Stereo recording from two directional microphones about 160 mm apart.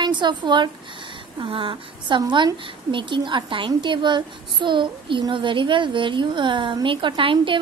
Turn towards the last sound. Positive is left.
turn(degrees=-30)  # may be behind; listen again after turning